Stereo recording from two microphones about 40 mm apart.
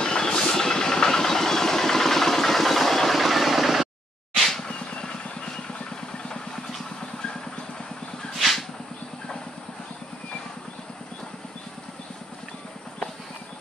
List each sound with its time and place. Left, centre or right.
0.0 s vehicle: centre
4.6 s vehicle: centre
8.4 s vehicle: centre